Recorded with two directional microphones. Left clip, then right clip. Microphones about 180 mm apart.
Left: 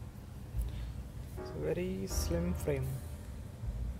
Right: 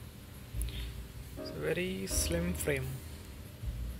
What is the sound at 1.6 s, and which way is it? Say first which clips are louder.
Speech: right 2 dB; 5° left (ahead or behind).